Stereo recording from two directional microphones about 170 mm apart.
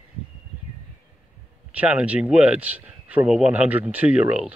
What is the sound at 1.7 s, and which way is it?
Speech, 10° right (ahead or behind).